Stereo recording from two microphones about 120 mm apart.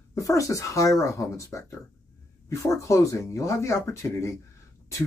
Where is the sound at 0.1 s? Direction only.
25° left (ahead or behind).